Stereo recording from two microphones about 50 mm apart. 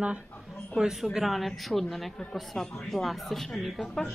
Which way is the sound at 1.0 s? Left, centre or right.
Centre.